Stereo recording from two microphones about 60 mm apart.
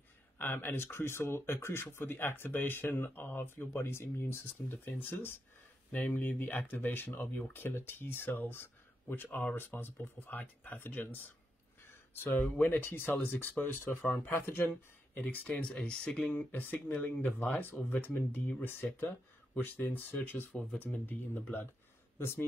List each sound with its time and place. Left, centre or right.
0.4 s speech: left
3.7 s speech: left
11.8 s a sound: left
12.3 s speech: left
15.1 s speech: left
16.3 s speech: left